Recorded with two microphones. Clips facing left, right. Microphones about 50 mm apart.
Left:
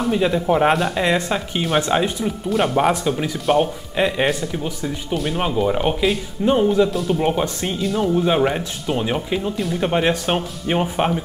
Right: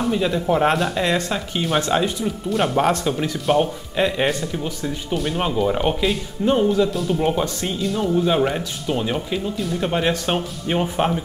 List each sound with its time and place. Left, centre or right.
0.0 s a man's voice: centre
1.0 s speech: centre
2.5 s a man's voice: centre
6.9 s a man's voice: centre
7.2 s speech: centre
7.8 s a man's voice: centre
8.2 s speech: centre